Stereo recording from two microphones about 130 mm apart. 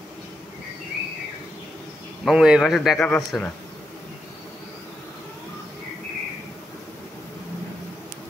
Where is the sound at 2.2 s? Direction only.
5° right (ahead or behind).